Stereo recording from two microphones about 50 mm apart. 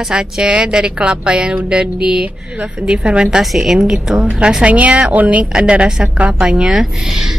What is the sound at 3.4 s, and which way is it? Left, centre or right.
Speech, centre.